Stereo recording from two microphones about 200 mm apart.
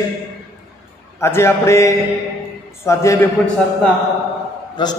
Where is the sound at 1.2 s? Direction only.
15° left (ahead or behind).